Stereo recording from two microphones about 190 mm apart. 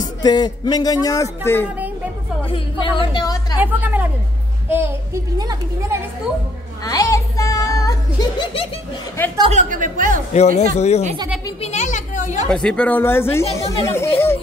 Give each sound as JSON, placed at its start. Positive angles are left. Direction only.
{"t": 0.0, "sound": "speech", "side_deg": 20}
{"t": 2.5, "sound": "speech", "side_deg": 25}
{"t": 3.5, "sound": "a woman's voice", "side_deg": -10}
{"t": 6.8, "sound": "a sound", "side_deg": 20}
{"t": 9.5, "sound": "a woman's voice", "side_deg": -40}
{"t": 10.3, "sound": "a woman's voice", "side_deg": 35}
{"t": 12.4, "sound": "speech", "side_deg": 5}